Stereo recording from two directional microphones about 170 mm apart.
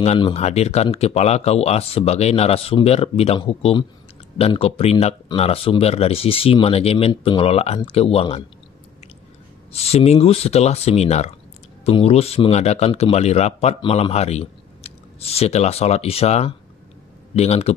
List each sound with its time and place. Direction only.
0.0 s speech: 35° left (ahead or behind)
9.7 s speech: 35° left (ahead or behind)